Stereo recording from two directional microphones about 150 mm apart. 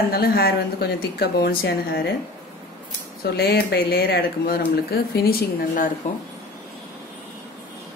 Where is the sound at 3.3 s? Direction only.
90° left.